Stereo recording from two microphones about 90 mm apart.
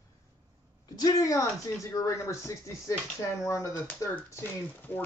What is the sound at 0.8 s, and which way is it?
Speech, 45° left (ahead or behind).